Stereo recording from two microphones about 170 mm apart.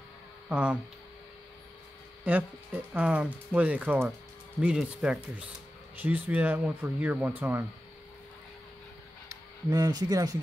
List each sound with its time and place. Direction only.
0.5 s speech: 5° right (ahead or behind)
2.2 s speech: 10° right (ahead or behind)
9.3 s speech: 20° right (ahead or behind)